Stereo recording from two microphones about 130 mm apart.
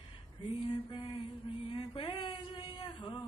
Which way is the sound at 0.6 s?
35° left (ahead or behind).